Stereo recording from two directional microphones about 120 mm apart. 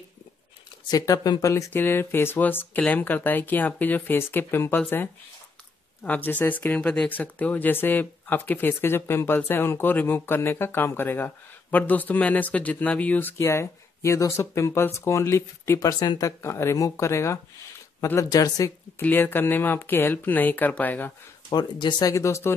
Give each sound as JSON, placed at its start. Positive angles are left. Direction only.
{"t": 0.8, "sound": "speech", "side_deg": 30}
{"t": 18.9, "sound": "speech", "side_deg": 15}
{"t": 21.5, "sound": "speech", "side_deg": 40}
{"t": 22.1, "sound": "speech", "side_deg": 25}